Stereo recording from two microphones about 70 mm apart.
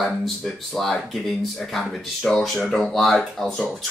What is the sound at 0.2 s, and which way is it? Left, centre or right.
Speech, centre.